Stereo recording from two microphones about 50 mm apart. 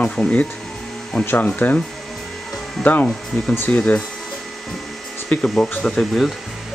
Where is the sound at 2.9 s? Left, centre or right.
Left.